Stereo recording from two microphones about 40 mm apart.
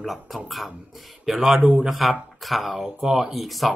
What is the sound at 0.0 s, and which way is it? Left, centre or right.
Speech, centre.